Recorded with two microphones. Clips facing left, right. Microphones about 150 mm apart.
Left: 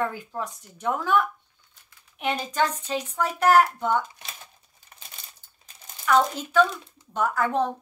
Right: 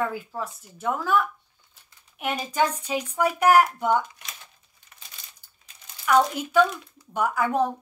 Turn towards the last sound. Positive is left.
turn(degrees=-10)  # may be behind; listen again after turning